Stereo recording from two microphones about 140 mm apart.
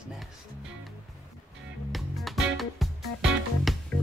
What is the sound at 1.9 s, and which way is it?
Music, centre (ahead or behind).